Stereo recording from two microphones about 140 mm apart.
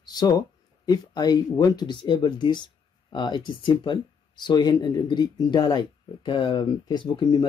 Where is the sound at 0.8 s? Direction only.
30° left (ahead or behind).